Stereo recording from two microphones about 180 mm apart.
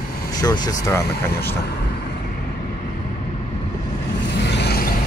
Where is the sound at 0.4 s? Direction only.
20° left (ahead or behind).